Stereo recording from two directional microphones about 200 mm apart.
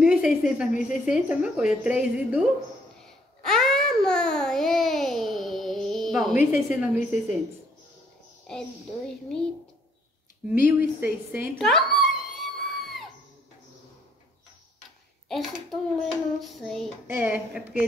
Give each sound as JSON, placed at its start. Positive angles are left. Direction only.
{"t": 0.0, "sound": "a sound", "side_deg": 0}
{"t": 1.0, "sound": "a child's voice", "side_deg": -5}
{"t": 3.0, "sound": "babbling", "side_deg": 0}
{"t": 6.7, "sound": "a child's voice", "side_deg": 0}
{"t": 8.5, "sound": "a child's voice", "side_deg": 5}
{"t": 10.5, "sound": "a woman's voice", "side_deg": -10}
{"t": 11.6, "sound": "a sound", "side_deg": 0}
{"t": 15.2, "sound": "a child's voice", "side_deg": 0}